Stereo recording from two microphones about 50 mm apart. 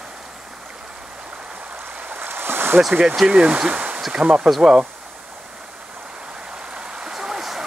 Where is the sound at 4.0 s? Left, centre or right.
Centre.